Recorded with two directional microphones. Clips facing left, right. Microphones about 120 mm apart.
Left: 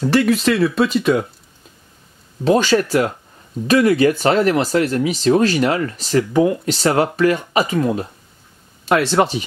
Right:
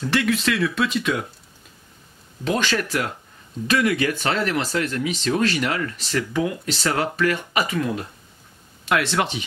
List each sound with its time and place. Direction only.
0.0 s speech: 35° left (ahead or behind)
2.4 s speech: 35° left (ahead or behind)